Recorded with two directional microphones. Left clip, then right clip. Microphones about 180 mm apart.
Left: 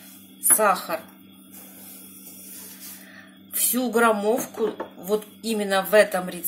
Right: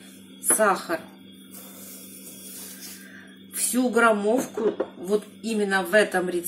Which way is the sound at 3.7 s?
60° left (ahead or behind).